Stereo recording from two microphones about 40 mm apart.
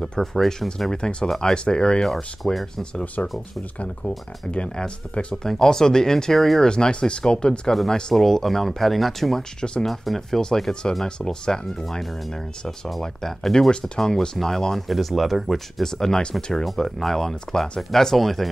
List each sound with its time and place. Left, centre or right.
0.2 s speech: centre
2.0 s speech: centre
2.8 s speech: left
4.5 s speech: left
5.3 s speech: centre
8.1 s speech: centre
10.7 s speech: left
13.0 s speech: centre
15.8 s speech: centre
16.6 s speech: centre